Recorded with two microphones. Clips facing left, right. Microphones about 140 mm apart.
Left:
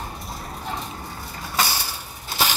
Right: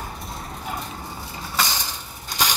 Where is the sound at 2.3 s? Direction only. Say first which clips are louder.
Left 1 dB; 15° right (ahead or behind).